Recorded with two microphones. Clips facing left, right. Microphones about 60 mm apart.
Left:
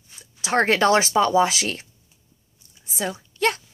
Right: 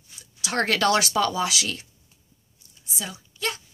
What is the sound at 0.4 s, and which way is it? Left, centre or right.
Speech, left.